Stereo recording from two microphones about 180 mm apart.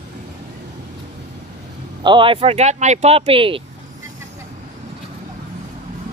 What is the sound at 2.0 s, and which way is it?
Speech, 25° right (ahead or behind).